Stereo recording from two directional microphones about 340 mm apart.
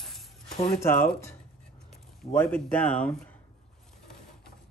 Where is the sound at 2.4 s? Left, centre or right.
Centre.